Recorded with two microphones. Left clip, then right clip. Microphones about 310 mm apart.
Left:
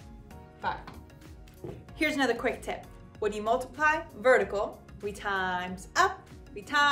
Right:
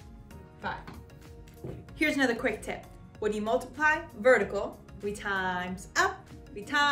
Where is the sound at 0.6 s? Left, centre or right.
Centre.